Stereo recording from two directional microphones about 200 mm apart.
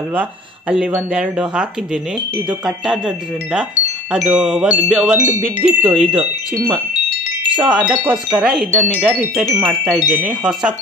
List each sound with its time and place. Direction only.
0.1 s speech: 5° right (ahead or behind)
4.1 s speech: 5° right (ahead or behind)
7.7 s speech: 5° right (ahead or behind)